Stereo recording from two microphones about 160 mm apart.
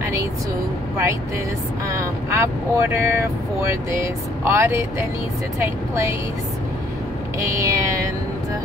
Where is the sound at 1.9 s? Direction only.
20° right (ahead or behind).